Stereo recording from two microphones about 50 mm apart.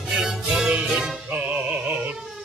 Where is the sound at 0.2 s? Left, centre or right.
Centre.